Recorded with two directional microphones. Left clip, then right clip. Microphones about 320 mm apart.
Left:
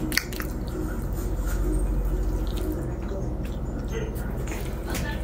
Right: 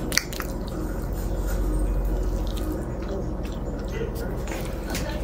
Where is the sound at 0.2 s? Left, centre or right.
Centre.